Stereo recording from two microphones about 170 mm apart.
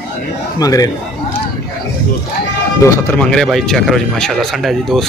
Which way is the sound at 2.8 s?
15° left (ahead or behind).